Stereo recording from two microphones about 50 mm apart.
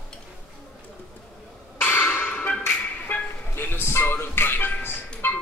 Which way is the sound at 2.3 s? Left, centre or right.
Left.